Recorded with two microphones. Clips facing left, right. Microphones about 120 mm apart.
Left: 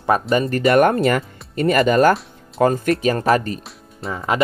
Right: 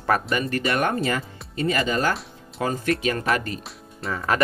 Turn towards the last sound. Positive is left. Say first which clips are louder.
# left 2 dB
turn(degrees=20)  # may be behind; listen again after turning